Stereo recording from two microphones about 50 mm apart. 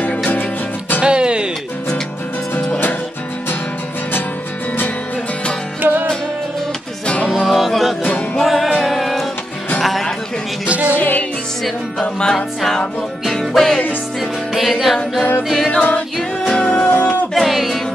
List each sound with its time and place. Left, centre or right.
0.0 s music: left
1.0 s music: centre
5.8 s music: right
7.4 s music: centre
10.7 s music: right
11.0 s music: left
12.0 s music: centre
15.7 s music: left
17.3 s music: centre